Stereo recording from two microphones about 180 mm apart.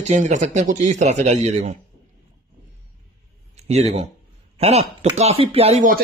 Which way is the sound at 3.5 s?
35° right (ahead or behind).